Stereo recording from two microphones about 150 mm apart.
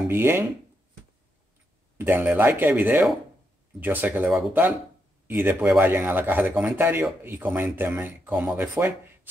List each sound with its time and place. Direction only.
0.1 s a man's voice: 15° right (ahead or behind)
2.0 s a man's voice: 15° right (ahead or behind)